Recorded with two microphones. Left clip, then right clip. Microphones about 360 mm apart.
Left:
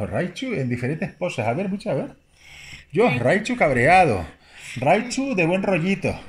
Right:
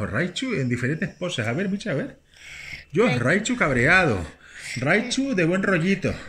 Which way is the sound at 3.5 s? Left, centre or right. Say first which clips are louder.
Left 4 dB; centre.